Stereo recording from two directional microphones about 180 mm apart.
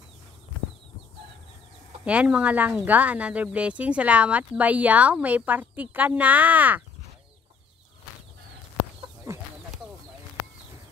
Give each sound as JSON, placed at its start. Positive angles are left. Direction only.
{"t": 2.0, "sound": "speech", "side_deg": -5}
{"t": 9.3, "sound": "chicken", "side_deg": -15}